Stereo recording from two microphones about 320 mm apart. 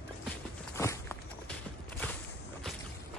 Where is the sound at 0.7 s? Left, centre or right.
Centre.